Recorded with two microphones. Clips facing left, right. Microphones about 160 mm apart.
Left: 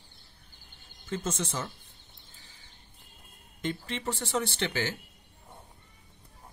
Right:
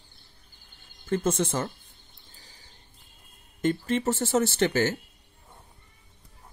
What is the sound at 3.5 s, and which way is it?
Speech, 45° right (ahead or behind).